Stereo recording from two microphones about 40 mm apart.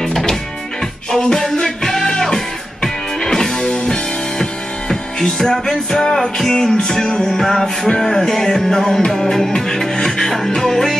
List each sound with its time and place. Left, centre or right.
0.0 s music: centre